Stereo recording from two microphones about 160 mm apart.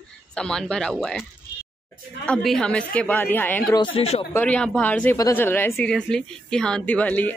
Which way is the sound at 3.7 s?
40° left (ahead or behind).